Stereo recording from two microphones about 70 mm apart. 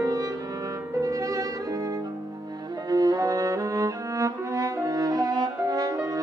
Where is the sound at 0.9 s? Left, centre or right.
Right.